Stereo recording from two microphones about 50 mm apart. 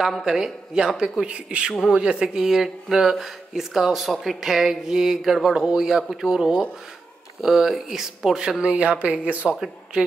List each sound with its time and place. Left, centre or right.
0.0 s speech: centre; by 9.6 s right